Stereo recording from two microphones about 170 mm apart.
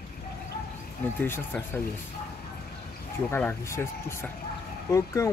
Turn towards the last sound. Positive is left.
turn(degrees=20)  # may be behind; listen again after turning